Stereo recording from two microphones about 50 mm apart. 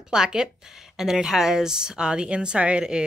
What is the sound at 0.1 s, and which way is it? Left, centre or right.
A woman's voice, centre.